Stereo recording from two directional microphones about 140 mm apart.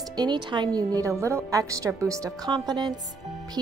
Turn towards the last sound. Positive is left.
turn(degrees=-30)  # may be behind; listen again after turning